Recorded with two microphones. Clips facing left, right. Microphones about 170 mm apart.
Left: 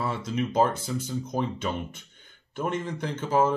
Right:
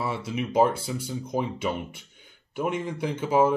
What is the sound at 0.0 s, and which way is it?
Speech, 5° right (ahead or behind).